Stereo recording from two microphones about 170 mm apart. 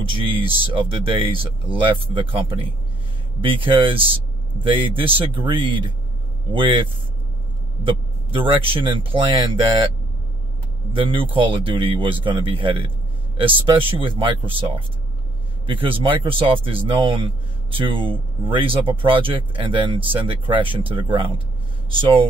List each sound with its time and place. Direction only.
0.1 s speech: 30° right (ahead or behind)
11.3 s speech: 30° right (ahead or behind)